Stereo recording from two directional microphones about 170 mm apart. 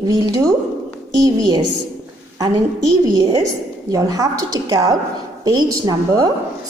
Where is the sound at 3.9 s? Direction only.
20° right (ahead or behind).